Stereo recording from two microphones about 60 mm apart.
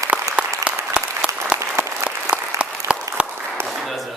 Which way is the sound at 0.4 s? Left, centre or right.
Right.